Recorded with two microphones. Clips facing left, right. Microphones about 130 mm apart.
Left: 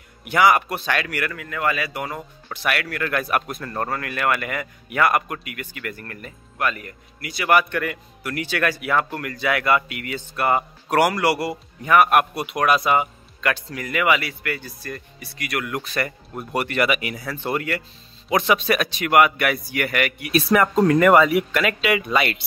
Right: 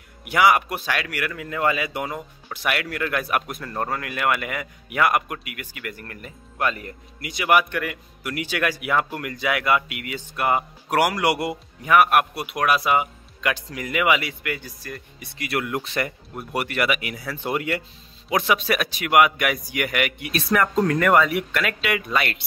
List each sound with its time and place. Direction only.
0.2 s speech: 10° right (ahead or behind)
1.3 s speech: 25° right (ahead or behind)
6.6 s speech: 25° right (ahead or behind)
11.8 s speech: 5° right (ahead or behind)
15.3 s speech: 25° right (ahead or behind)
16.3 s speech: 5° right (ahead or behind)
18.3 s speech: 5° right (ahead or behind)
20.3 s speech: 10° left (ahead or behind)